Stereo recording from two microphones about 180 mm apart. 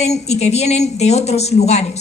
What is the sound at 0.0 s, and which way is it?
A woman's voice, 35° left (ahead or behind).